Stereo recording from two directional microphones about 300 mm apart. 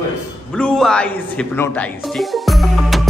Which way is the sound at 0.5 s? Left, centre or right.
Centre.